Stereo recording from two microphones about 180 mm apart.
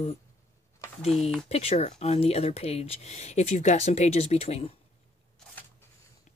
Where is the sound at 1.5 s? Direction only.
35° left (ahead or behind).